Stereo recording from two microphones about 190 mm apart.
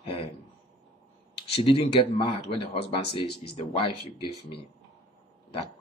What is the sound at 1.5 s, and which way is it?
Speech, 30° left (ahead or behind).